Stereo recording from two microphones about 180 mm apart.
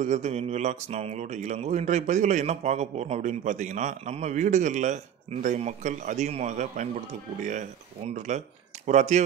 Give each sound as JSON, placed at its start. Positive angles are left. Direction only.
{"t": 0.0, "sound": "mantra", "side_deg": -40}
{"t": 8.3, "sound": "mantra", "side_deg": -40}